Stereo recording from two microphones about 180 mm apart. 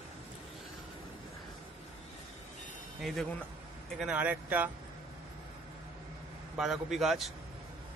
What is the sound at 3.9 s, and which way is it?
Speech, 5° right (ahead or behind).